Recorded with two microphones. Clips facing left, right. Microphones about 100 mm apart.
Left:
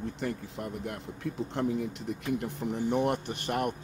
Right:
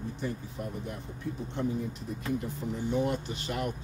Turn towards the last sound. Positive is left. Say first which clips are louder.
# left 3 dB
turn(degrees=55)  # may be behind; listen again after turning